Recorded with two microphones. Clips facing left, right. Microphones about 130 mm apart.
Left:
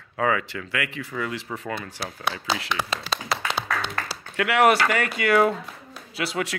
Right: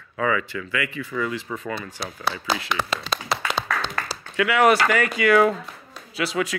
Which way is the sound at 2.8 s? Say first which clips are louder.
Right 2 dB; 10° left (ahead or behind).